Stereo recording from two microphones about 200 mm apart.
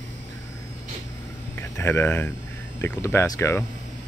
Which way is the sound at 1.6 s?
10° left (ahead or behind).